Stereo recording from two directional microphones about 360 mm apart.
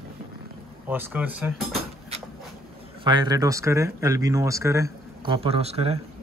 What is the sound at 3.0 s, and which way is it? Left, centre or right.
Speech, centre.